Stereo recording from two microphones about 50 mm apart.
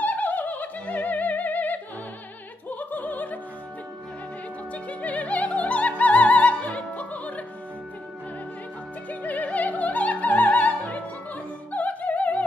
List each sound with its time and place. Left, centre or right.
0.0 s music: left
2.7 s opera: left
4.8 s music: left
9.2 s opera: left